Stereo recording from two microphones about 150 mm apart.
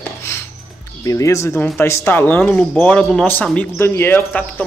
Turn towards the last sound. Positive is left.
turn(degrees=10)  # may be behind; listen again after turning